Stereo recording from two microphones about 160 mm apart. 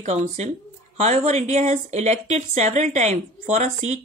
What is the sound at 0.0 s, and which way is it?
Speech, 45° right (ahead or behind).